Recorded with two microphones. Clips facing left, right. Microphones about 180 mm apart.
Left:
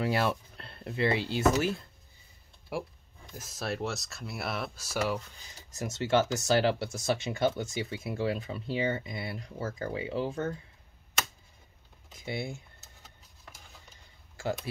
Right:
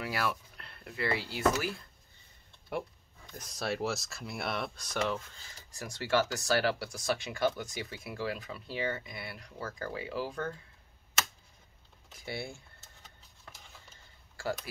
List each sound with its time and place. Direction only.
0.0 s speech: 25° left (ahead or behind)
3.3 s speech: 5° left (ahead or behind); by 10.5 s 25° left (ahead or behind)
12.1 s speech: 20° left (ahead or behind)
14.3 s speech: 20° left (ahead or behind)